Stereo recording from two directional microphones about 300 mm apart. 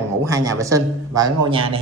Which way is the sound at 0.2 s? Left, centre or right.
Centre.